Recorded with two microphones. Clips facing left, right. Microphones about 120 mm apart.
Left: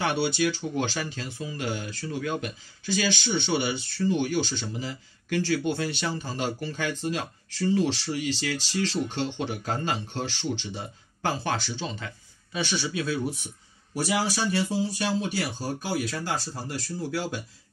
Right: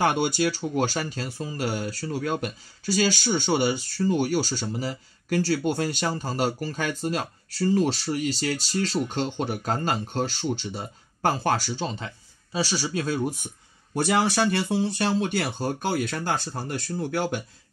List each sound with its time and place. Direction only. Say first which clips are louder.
0.0 s speech: right 2 dB; 45° right (ahead or behind)
13.9 s speech: right 4 dB; 60° right (ahead or behind)